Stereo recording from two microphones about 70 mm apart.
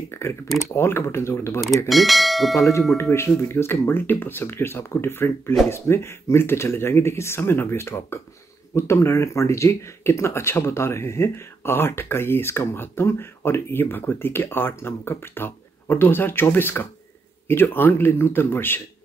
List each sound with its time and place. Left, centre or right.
0.1 s speech: left
1.9 s speech: centre
3.0 s speech: left